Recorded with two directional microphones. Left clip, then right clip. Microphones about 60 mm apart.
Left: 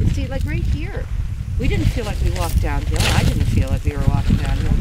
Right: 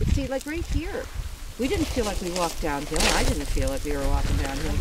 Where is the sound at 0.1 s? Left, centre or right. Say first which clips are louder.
Even; left.